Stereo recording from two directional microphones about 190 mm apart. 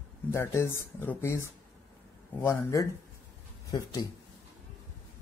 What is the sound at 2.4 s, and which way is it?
Speech, 15° left (ahead or behind).